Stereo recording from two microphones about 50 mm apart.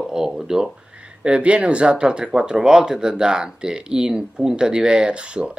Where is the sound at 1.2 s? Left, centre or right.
Right.